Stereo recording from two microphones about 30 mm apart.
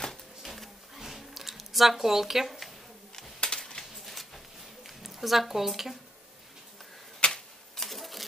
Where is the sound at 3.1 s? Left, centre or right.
Left.